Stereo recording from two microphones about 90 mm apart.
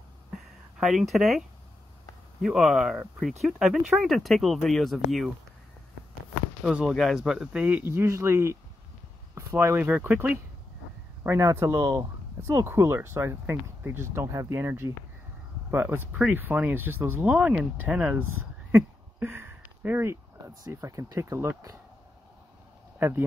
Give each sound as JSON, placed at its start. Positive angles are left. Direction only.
{"t": 0.4, "sound": "a sound", "side_deg": 0}
{"t": 2.4, "sound": "speech", "side_deg": -5}
{"t": 6.9, "sound": "speech", "side_deg": 0}
{"t": 8.1, "sound": "speech", "side_deg": -35}
{"t": 9.9, "sound": "speech", "side_deg": -15}
{"t": 11.2, "sound": "speech", "side_deg": -30}
{"t": 17.3, "sound": "speech", "side_deg": -15}
{"t": 18.1, "sound": "a sound", "side_deg": -25}
{"t": 20.6, "sound": "speech", "side_deg": -40}
{"t": 22.9, "sound": "speech", "side_deg": -25}